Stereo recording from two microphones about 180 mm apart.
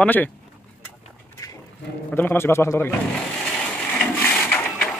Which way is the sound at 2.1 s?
10° left (ahead or behind).